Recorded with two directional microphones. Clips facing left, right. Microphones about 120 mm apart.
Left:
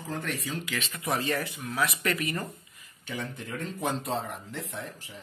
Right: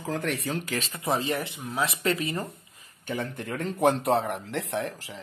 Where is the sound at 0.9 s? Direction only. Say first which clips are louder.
Right 2 dB; 25° right (ahead or behind).